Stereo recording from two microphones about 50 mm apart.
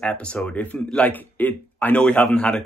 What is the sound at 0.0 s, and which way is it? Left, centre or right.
Speech, left.